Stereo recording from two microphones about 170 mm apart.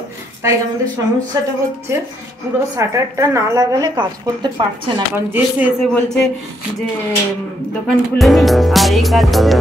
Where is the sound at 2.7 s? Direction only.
15° right (ahead or behind).